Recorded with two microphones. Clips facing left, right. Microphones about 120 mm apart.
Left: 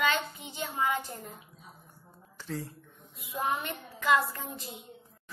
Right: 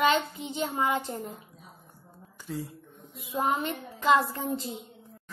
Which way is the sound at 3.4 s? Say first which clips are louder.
Right 4 dB; 30° right (ahead or behind).